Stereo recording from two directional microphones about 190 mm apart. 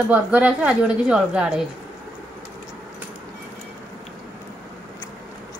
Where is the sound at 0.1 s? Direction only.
5° right (ahead or behind).